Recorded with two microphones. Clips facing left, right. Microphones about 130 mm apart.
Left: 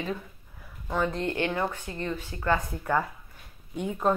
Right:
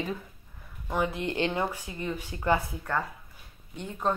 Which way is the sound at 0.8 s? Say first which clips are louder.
Left 1 dB; 10° right (ahead or behind).